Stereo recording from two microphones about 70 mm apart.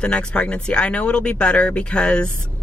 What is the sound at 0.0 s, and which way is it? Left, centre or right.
Speech, centre.